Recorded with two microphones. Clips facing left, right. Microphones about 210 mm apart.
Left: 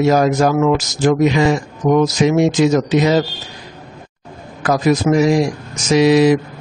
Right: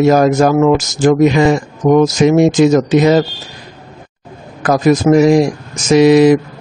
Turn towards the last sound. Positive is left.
turn(degrees=-50)  # may be behind; listen again after turning